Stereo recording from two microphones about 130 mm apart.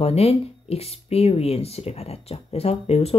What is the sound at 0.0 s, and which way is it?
Speech, 50° left (ahead or behind).